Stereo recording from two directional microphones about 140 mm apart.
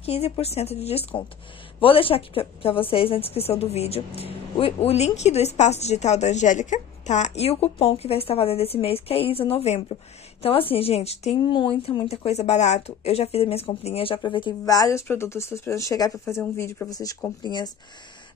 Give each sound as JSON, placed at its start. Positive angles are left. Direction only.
{"t": 0.0, "sound": "a woman's voice", "side_deg": 45}